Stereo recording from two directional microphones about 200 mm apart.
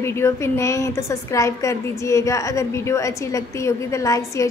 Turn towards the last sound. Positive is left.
turn(degrees=15)  # may be behind; listen again after turning